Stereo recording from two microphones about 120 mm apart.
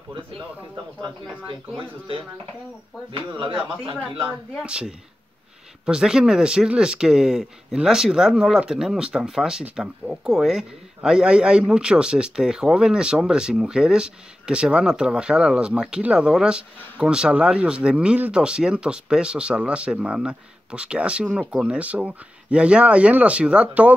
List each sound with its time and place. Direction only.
1.8 s speech: 50° right (ahead or behind)
4.6 s speech: 5° right (ahead or behind)